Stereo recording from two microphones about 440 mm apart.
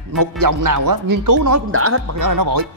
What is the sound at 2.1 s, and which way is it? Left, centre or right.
Speech, right.